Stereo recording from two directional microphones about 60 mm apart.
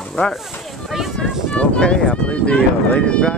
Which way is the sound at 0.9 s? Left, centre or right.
Centre.